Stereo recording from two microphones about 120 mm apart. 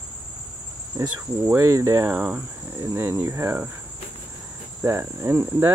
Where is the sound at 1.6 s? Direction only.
25° right (ahead or behind).